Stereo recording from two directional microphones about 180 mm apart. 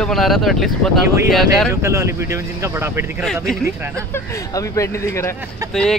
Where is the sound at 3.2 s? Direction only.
5° left (ahead or behind).